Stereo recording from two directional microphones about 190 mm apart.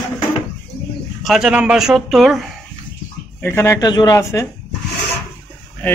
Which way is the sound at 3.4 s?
15° left (ahead or behind).